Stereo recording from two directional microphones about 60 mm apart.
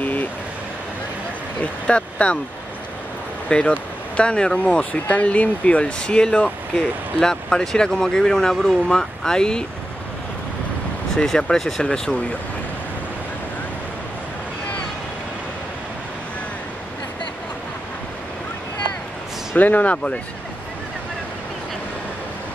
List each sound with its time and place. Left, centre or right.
0.0 s vehicle: left
1.6 s speech: centre
3.4 s speech: centre
11.1 s speech: centre
19.5 s speech: left